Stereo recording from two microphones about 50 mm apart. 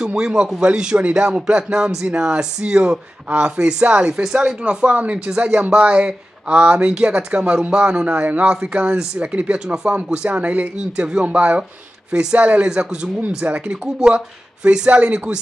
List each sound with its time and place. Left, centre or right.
0.0 s a man's voice: centre
13.4 s speech: right